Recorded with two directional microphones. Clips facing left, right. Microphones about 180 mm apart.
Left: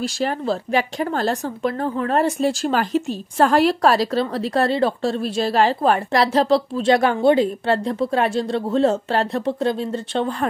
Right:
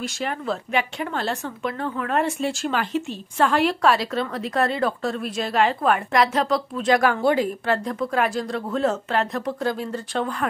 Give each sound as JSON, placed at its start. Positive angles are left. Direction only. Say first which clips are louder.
{"t": 0.0, "sound": "speech", "louder": "left 5 dB", "side_deg": 35}